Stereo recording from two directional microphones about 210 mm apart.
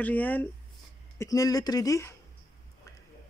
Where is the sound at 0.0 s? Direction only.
10° left (ahead or behind).